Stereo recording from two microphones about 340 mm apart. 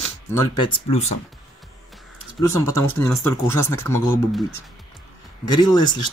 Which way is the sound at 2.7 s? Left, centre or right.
Centre.